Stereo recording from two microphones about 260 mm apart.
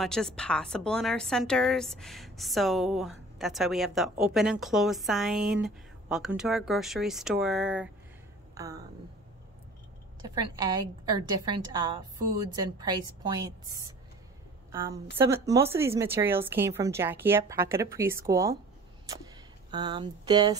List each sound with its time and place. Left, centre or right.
0.0 s a woman's voice: centre
10.2 s a woman's voice: centre
19.7 s a woman's voice: centre